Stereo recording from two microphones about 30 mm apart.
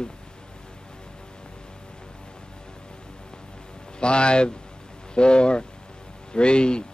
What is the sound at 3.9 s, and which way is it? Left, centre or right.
Speech, left.